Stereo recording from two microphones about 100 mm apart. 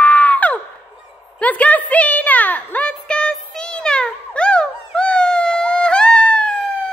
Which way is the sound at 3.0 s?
10° left (ahead or behind).